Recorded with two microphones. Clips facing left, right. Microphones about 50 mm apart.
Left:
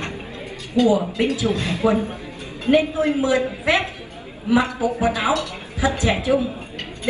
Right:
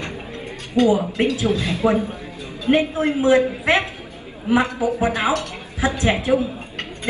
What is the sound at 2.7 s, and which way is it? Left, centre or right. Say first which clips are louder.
A woman's voice: left 1 dB; right.